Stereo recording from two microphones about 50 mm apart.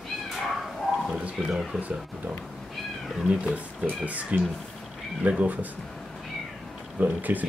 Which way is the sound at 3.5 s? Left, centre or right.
Right.